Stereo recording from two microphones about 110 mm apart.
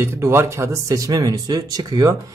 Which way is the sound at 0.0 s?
25° right (ahead or behind).